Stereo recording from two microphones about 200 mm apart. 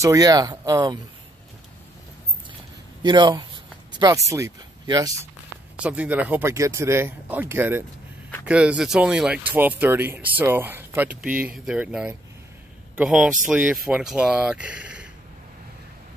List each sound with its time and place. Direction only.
0.0 s speech: 15° right (ahead or behind)
3.0 s a sound: 20° right (ahead or behind)
4.3 s speech: 20° right (ahead or behind)
5.8 s a man's voice: 5° right (ahead or behind)